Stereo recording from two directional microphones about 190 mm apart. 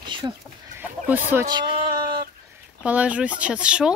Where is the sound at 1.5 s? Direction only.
25° right (ahead or behind).